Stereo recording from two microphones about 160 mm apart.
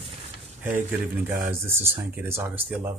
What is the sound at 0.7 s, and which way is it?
Speech, 10° right (ahead or behind).